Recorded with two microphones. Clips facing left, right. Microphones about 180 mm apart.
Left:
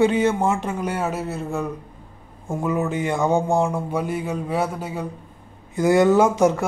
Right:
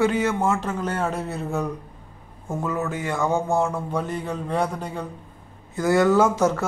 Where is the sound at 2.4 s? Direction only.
15° left (ahead or behind).